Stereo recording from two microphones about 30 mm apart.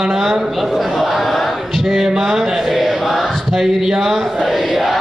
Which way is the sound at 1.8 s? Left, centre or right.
Centre.